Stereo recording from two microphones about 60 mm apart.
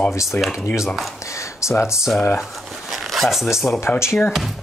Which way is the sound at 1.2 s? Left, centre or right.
Left.